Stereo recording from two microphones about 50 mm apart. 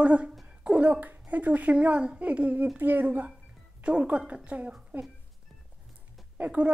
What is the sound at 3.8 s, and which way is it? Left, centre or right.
A woman's voice, right.